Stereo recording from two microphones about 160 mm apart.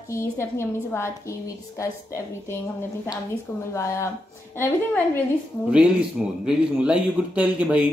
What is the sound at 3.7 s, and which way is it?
A woman's voice, 20° left (ahead or behind).